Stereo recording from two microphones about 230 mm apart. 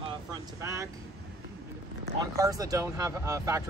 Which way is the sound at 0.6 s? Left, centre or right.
Centre.